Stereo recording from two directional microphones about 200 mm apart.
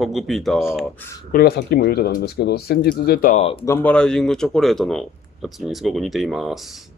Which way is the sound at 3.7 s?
10° left (ahead or behind).